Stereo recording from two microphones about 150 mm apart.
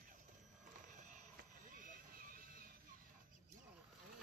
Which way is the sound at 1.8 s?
65° right (ahead or behind).